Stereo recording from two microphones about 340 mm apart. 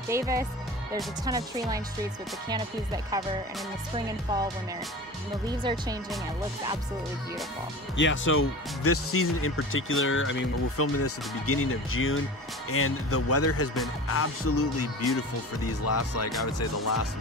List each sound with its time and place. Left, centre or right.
0.1 s speech: centre
5.6 s speech: centre
8.0 s speech: left